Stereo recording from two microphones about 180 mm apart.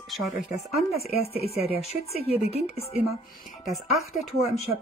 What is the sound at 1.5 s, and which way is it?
Speech, 35° left (ahead or behind).